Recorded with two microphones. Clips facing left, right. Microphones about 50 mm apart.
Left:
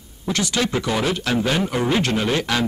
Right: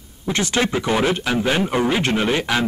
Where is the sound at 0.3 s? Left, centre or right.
Right.